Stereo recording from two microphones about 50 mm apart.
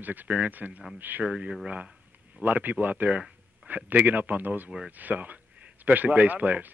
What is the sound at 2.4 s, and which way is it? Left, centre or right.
Speech, right.